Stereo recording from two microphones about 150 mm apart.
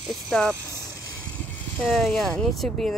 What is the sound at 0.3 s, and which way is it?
Speech, 5° left (ahead or behind).